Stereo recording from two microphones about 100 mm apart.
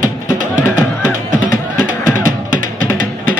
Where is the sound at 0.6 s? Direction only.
20° left (ahead or behind).